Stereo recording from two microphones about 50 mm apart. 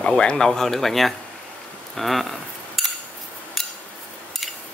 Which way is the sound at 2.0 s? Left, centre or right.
Centre.